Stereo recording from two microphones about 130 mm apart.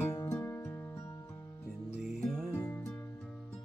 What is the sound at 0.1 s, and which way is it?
Music, 25° left (ahead or behind).